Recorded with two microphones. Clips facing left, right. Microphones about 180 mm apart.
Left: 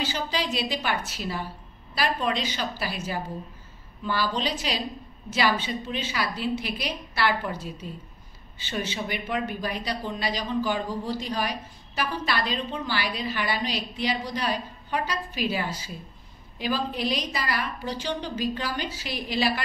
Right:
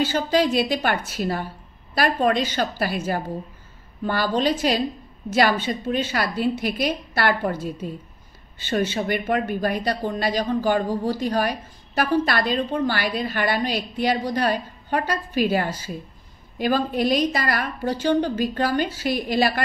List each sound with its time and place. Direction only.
0.0 s speech: 50° right (ahead or behind)